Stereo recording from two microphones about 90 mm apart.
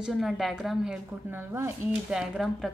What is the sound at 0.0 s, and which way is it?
Speech, 5° right (ahead or behind).